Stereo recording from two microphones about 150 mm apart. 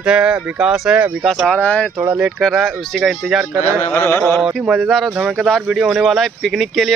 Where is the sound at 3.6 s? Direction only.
15° left (ahead or behind).